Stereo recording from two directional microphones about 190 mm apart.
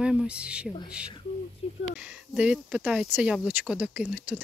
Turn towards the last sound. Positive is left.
turn(degrees=-5)  # may be behind; listen again after turning